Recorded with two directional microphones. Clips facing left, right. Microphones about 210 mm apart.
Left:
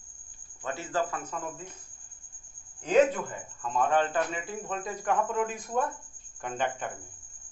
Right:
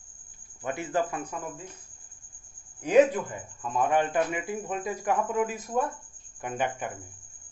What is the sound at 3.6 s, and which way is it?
A man's voice, 15° right (ahead or behind).